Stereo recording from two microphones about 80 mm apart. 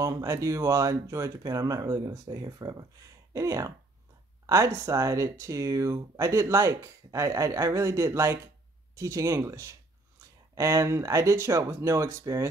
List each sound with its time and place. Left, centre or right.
0.0 s speech: right